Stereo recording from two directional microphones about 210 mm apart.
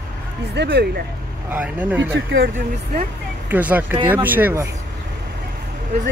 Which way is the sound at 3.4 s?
10° right (ahead or behind).